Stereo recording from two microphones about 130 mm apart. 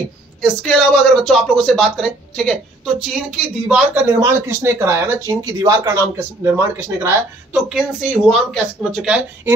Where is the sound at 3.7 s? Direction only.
15° right (ahead or behind).